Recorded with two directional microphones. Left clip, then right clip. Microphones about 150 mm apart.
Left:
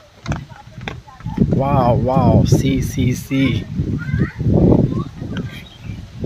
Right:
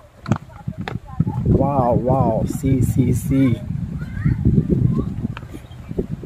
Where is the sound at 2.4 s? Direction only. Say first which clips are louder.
Left 4 dB; 15° right (ahead or behind).